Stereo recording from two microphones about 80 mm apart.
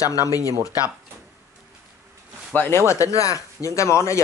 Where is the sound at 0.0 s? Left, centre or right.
Left.